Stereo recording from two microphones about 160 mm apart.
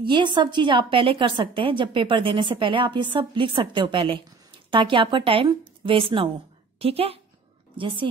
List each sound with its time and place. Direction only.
0.0 s a woman's voice: 30° right (ahead or behind)